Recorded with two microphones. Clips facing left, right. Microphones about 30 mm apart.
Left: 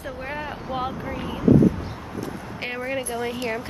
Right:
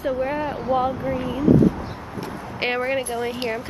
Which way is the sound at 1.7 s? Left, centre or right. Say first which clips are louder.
Right 2 dB; right.